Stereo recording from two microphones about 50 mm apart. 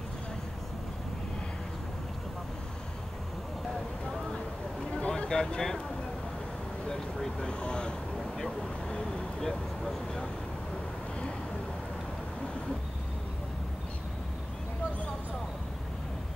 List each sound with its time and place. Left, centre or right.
5.0 s a sound: left
5.3 s speech: centre
7.4 s speech: centre
9.4 s speech: centre